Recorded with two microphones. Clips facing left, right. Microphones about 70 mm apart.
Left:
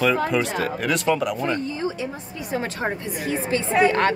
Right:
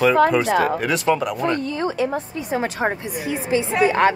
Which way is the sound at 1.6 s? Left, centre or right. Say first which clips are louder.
Right 4 dB; right.